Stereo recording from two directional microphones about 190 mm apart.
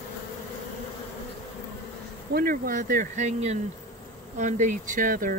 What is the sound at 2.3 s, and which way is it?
Speech, 50° right (ahead or behind).